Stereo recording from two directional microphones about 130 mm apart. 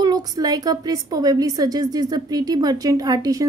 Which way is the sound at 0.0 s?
30° right (ahead or behind).